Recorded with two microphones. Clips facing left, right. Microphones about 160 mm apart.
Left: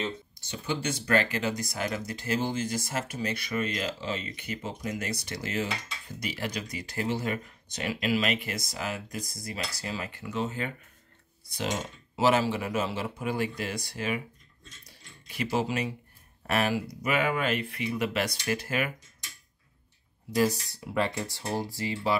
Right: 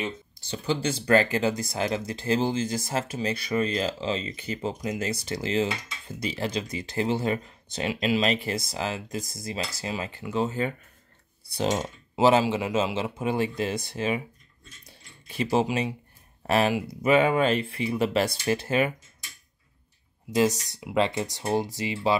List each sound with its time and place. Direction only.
0.7 s speech: 30° right (ahead or behind)
15.2 s speech: 25° right (ahead or behind)
20.7 s speech: 20° right (ahead or behind)